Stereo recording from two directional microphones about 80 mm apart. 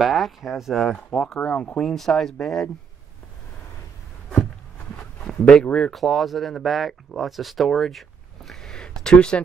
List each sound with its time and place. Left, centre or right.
0.0 s speech: centre
4.9 s speech: centre
8.5 s a sound: centre